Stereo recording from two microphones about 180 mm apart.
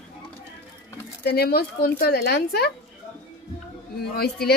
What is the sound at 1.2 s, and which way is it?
Speech, 60° left (ahead or behind).